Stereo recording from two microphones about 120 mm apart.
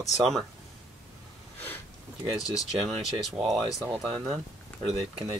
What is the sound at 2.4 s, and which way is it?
Speech, 30° left (ahead or behind).